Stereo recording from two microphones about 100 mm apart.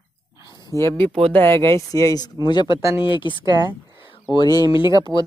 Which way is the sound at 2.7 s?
35° right (ahead or behind).